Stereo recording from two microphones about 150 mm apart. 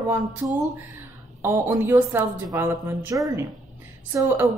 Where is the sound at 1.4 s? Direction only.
20° right (ahead or behind).